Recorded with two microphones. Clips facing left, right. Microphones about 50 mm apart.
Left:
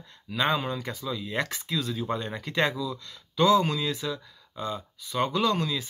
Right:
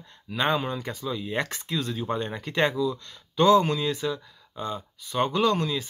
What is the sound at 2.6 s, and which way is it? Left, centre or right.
Speech, centre.